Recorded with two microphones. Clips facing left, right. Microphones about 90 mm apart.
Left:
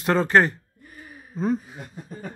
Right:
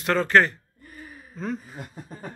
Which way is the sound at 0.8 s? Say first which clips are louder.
Right 2 dB; 5° left (ahead or behind).